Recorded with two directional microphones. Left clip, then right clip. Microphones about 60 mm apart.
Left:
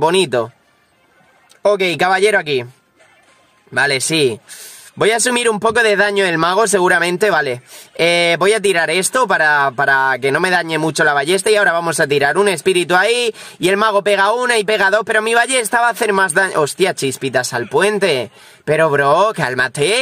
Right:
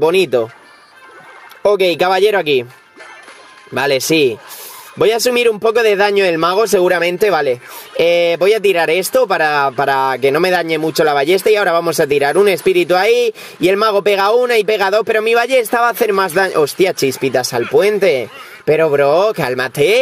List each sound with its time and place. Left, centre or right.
0.0 s speech: right
1.8 s speech: right
3.7 s speech: right
4.9 s speech: right
6.9 s speech: centre
7.9 s speech: right
17.6 s speech: right